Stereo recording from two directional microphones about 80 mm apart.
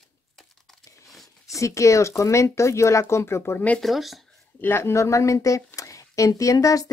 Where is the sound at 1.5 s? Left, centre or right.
Left.